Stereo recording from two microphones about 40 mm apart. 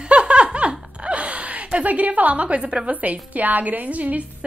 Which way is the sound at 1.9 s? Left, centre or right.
Right.